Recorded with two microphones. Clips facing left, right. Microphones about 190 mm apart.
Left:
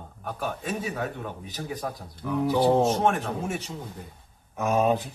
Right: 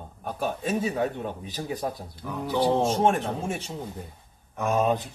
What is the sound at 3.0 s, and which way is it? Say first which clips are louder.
Speech: right 2 dB; 25° right (ahead or behind).